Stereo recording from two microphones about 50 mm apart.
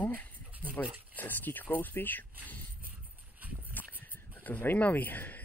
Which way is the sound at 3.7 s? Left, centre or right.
Left.